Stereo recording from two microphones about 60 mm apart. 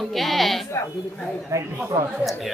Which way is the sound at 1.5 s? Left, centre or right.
Right.